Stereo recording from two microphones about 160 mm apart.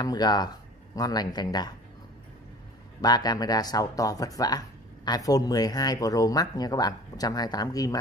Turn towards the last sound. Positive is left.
turn(degrees=20)  # may be behind; listen again after turning